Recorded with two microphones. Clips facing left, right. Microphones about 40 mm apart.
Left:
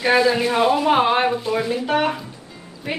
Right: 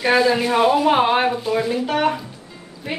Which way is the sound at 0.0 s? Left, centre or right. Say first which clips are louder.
Even; centre.